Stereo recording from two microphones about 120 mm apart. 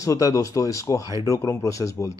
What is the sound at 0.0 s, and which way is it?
Speech, 30° left (ahead or behind).